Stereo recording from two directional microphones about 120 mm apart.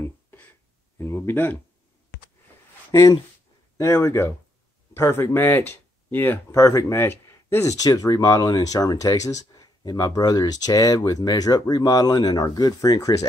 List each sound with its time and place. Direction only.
0.9 s speech: 20° left (ahead or behind)
2.9 s speech: 25° left (ahead or behind)